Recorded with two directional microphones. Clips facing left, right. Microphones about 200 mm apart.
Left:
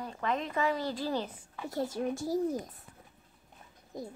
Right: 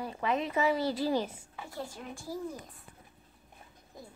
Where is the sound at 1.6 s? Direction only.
40° left (ahead or behind).